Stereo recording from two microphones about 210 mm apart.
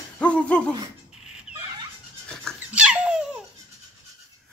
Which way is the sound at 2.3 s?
Centre (ahead or behind).